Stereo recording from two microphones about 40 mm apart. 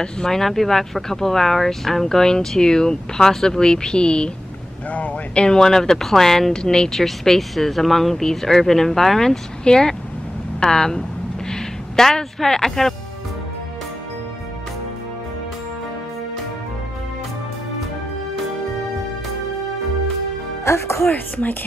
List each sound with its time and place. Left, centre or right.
0.0 s speech: centre
4.9 s speech: left; by 11.1 s centre
11.5 s music: centre
21.1 s speech: left